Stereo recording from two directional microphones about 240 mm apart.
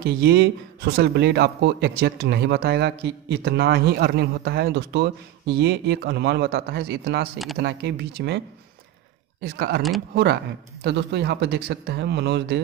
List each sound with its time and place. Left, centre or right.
0.0 s speech: right
9.4 s speech: right